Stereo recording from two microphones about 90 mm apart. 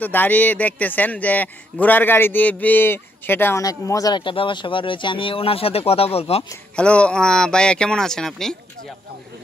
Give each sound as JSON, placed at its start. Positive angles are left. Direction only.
{"t": 0.0, "sound": "speech", "side_deg": 20}
{"t": 3.6, "sound": "speech", "side_deg": 40}
{"t": 4.2, "sound": "speech", "side_deg": 70}
{"t": 6.7, "sound": "speech", "side_deg": 10}